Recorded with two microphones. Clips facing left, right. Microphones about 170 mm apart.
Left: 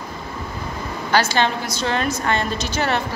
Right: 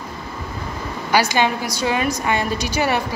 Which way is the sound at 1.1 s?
15° right (ahead or behind).